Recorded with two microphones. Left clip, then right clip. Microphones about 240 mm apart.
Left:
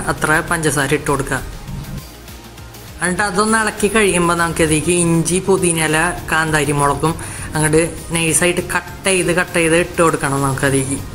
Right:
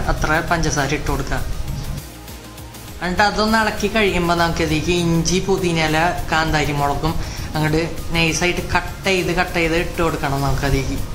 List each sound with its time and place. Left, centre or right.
0.0 s a woman's voice: centre
3.0 s a woman's voice: centre